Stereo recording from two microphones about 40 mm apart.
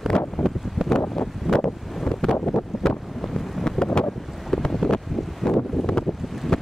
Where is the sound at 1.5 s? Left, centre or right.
Centre.